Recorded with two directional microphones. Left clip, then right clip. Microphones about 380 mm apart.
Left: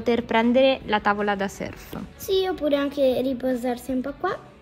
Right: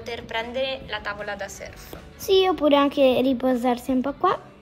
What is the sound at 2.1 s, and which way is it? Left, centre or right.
A child's voice, centre.